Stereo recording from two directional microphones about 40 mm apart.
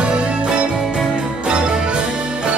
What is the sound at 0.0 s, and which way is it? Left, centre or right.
Music, right.